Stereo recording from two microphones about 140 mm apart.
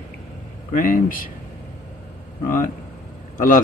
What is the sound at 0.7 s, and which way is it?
Speech, 80° left.